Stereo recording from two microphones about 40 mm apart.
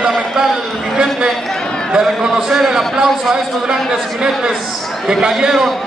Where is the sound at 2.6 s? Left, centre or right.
Centre.